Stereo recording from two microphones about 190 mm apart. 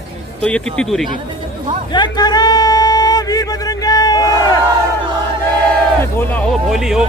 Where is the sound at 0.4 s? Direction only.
5° left (ahead or behind).